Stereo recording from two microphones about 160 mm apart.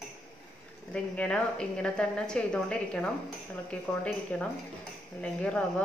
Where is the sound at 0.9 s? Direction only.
5° left (ahead or behind).